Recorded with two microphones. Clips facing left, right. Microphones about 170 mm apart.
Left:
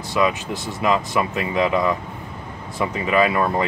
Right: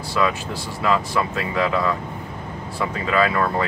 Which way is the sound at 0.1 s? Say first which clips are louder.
Left 2 dB; 20° left (ahead or behind).